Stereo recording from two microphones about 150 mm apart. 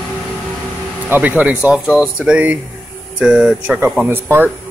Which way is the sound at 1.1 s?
10° right (ahead or behind).